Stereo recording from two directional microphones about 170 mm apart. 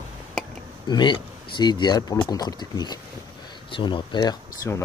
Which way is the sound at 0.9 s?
25° left (ahead or behind).